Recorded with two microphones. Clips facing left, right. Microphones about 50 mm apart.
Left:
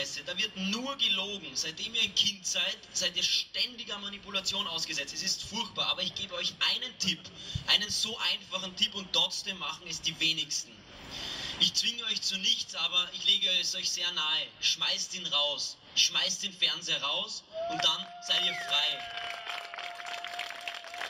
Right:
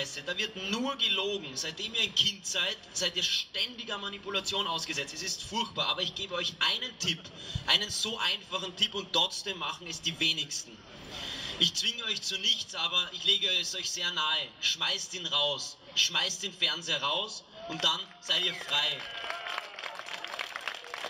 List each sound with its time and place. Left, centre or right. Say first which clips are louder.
0.0 s a man's voice: right 1 dB; right